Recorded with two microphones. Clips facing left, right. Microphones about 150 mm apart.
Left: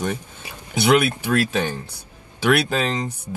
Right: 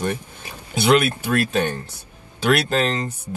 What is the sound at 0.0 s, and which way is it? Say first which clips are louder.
Speech: right 1 dB; 10° left (ahead or behind).